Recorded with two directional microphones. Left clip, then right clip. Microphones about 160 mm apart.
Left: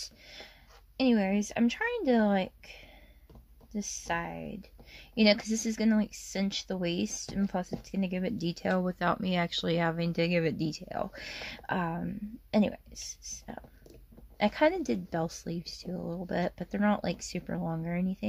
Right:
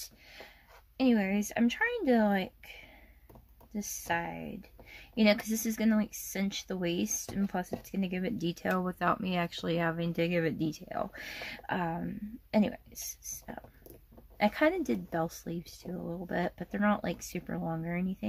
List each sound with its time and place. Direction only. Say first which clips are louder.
0.0 s a sound: left 4 dB; 35° left (ahead or behind)
0.9 s speech: left 1 dB; 35° left (ahead or behind)
14.4 s speech: left 1 dB; 30° left (ahead or behind)